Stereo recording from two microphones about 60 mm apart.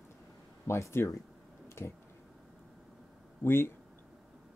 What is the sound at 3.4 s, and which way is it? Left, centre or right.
Speech, left.